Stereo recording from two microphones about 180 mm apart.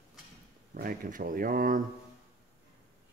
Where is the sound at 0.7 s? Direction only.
50° right (ahead or behind).